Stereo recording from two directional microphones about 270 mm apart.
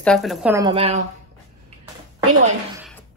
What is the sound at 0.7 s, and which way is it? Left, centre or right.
Speech, right.